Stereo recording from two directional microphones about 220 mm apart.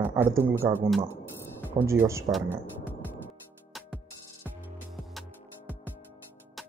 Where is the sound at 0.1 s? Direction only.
10° right (ahead or behind).